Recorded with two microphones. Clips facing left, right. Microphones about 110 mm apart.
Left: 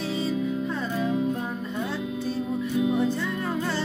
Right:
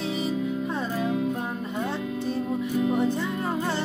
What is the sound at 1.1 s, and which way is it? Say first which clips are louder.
Music: left 2 dB; centre (ahead or behind).